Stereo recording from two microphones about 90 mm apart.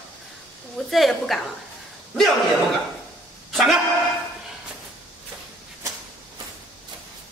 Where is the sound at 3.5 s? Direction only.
Centre (ahead or behind).